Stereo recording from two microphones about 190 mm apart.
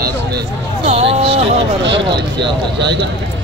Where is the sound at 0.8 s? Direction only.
35° right (ahead or behind).